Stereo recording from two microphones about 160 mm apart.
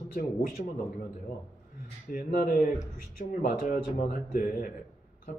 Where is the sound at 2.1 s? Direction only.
55° left (ahead or behind).